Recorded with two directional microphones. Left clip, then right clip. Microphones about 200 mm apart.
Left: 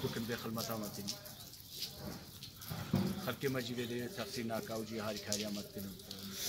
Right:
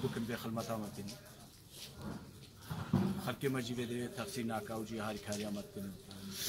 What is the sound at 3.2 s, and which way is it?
A man's voice, 55° right (ahead or behind).